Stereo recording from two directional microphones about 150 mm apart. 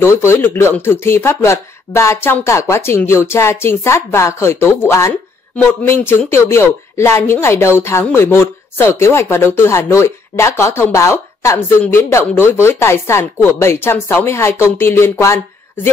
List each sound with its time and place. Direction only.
0.0 s a woman's voice: 15° left (ahead or behind)